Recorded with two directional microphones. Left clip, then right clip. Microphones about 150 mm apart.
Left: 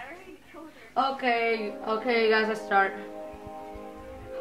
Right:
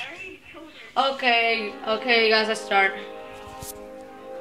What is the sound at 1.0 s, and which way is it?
Speech, 25° right (ahead or behind).